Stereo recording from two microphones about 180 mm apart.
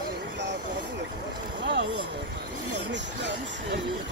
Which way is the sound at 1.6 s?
80° right.